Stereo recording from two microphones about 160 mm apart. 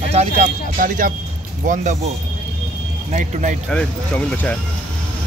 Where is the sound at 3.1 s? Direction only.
50° right (ahead or behind).